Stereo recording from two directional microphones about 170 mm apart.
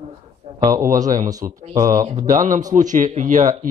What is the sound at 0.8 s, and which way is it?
A man's voice, 50° right (ahead or behind).